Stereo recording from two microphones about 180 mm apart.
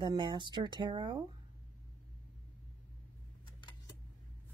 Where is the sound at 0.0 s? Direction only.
25° right (ahead or behind).